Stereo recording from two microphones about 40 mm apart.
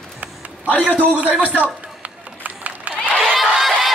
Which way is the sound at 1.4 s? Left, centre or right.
Right.